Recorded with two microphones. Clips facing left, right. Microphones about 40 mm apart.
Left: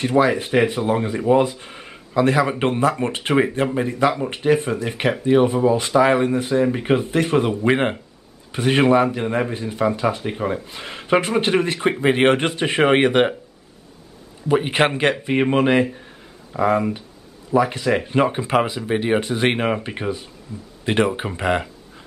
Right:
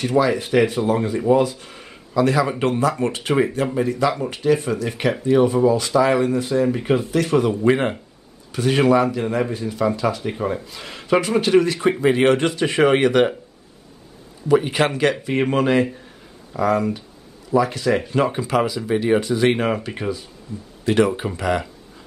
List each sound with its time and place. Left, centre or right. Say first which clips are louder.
0.3 s speech: even; left
10.2 s speech: even; centre
10.7 s speech: left 1 dB; left
14.5 s speech: even; left